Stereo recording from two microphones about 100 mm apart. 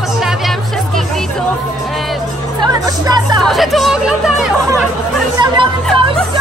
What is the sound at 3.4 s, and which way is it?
Speech, centre (ahead or behind).